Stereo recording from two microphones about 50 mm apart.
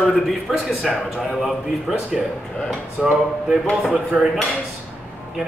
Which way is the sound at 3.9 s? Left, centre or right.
Right.